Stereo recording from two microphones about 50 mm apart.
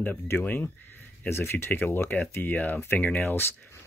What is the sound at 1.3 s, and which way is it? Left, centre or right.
Speech, left.